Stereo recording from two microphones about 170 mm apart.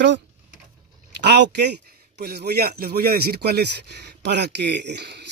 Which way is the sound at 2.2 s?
70° right (ahead or behind).